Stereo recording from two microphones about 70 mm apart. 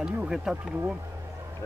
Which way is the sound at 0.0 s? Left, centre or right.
Centre.